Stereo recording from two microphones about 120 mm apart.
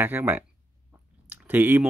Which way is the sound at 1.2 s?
15° right (ahead or behind).